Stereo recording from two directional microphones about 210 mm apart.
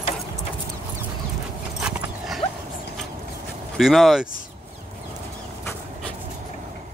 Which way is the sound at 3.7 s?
Centre (ahead or behind).